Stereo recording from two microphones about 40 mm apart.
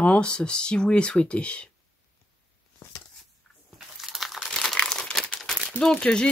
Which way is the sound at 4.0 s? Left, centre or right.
Centre.